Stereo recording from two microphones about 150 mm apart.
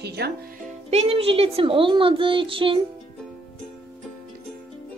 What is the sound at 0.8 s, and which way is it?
A child's voice, 40° right (ahead or behind).